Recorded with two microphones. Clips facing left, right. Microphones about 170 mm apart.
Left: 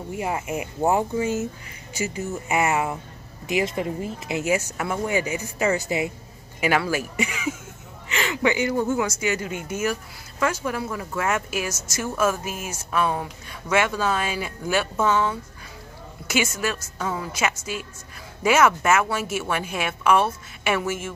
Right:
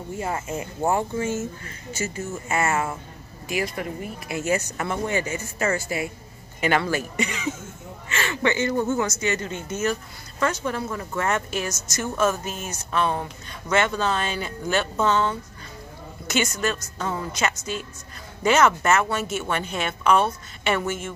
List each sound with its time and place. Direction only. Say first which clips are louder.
0.1 s speech: left 1 dB; 15° left (ahead or behind)
6.6 s speech: even; 5° left (ahead or behind)